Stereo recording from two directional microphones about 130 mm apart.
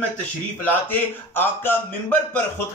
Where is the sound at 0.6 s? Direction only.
15° left (ahead or behind).